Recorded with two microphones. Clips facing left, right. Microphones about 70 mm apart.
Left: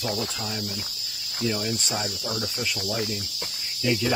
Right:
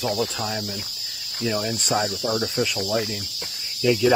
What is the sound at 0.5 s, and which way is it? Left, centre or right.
Speech, right.